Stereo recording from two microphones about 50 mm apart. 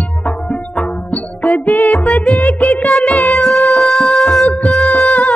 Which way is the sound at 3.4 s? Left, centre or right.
Centre.